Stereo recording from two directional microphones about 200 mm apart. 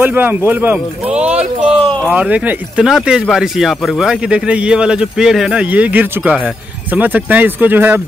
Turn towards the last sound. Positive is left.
turn(degrees=-10)  # may be behind; listen again after turning